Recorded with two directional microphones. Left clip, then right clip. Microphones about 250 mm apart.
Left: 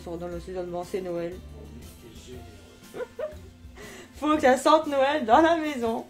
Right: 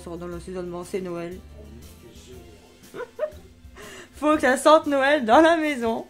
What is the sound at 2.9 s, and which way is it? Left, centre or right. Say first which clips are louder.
Music: even; right.